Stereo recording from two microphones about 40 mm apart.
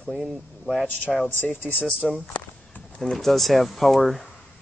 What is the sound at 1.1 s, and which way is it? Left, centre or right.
Speech, centre.